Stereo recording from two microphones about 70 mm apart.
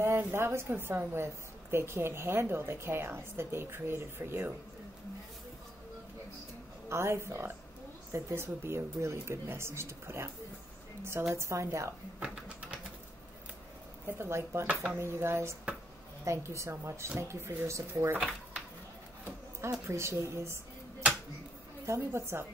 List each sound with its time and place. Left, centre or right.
0.0 s a woman's voice: right
6.9 s a woman's voice: right
11.3 s speech: right
12.2 s typing: centre
14.0 s a woman's voice: right
14.7 s speech: centre
15.0 s a woman's voice: right
19.6 s speech: right
21.8 s a woman's voice: right